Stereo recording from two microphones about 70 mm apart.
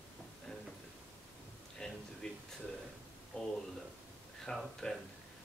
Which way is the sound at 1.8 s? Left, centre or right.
Centre.